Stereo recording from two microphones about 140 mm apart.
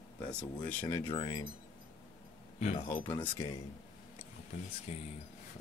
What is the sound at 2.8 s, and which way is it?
Speech, 20° left (ahead or behind).